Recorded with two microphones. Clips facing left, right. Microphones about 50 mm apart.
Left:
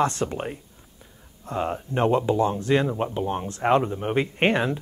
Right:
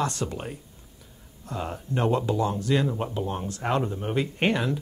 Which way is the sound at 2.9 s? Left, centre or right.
Centre.